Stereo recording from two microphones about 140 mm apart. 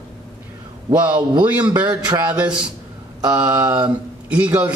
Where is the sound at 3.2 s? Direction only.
25° right (ahead or behind).